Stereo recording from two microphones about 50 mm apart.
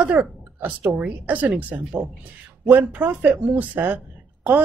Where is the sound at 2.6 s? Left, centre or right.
Right.